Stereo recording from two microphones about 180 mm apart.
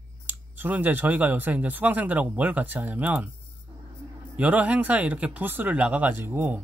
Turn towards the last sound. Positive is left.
turn(degrees=-10)  # may be behind; listen again after turning